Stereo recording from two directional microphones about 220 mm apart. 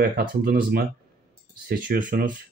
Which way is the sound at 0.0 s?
40° right (ahead or behind).